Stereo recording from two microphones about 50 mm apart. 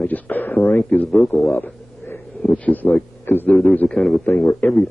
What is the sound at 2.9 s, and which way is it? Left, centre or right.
Speech, left.